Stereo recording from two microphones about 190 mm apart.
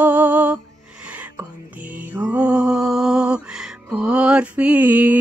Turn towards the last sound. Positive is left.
turn(degrees=-10)  # may be behind; listen again after turning